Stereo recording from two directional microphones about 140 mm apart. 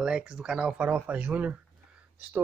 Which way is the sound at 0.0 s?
5° right (ahead or behind).